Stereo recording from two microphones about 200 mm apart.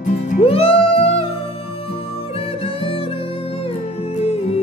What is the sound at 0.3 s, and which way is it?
Music, 30° left (ahead or behind).